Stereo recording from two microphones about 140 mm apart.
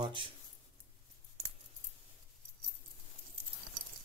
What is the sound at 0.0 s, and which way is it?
Speech, 35° right (ahead or behind).